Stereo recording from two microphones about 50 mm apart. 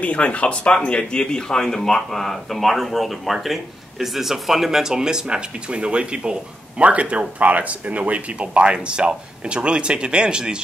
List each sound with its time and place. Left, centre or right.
0.0 s speech: left; by 10.6 s centre